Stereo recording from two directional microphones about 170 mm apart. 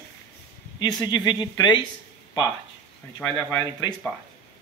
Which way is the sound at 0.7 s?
25° left (ahead or behind).